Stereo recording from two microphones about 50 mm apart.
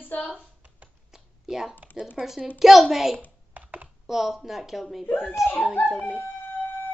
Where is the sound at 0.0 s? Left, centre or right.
Left.